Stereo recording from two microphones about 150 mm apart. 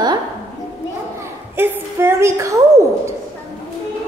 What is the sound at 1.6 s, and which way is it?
Speech, 15° right (ahead or behind).